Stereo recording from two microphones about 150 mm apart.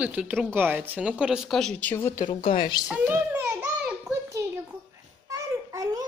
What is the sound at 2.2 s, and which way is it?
Speech, 35° left (ahead or behind).